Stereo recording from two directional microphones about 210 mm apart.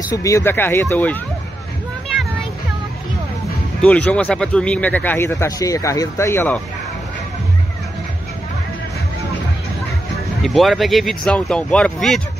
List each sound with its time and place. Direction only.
0.1 s speech: 15° left (ahead or behind)
3.8 s speech: 5° left (ahead or behind)
10.4 s speech: centre (ahead or behind)